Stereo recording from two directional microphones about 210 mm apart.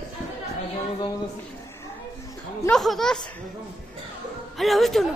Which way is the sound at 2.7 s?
Centre (ahead or behind).